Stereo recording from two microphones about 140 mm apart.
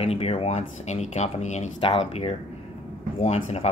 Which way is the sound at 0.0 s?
50° left (ahead or behind).